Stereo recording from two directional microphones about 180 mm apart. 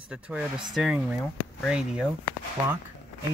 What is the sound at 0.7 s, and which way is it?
Speech, centre (ahead or behind).